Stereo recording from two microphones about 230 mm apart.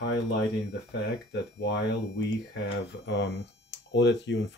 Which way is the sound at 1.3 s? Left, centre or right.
Left.